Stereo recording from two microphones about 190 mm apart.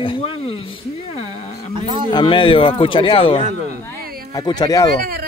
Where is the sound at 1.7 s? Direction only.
25° right (ahead or behind).